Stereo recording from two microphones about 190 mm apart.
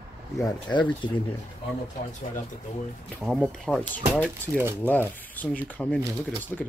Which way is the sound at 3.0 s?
Centre (ahead or behind).